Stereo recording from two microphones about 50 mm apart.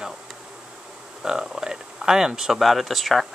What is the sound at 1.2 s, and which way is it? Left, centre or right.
Speech, centre.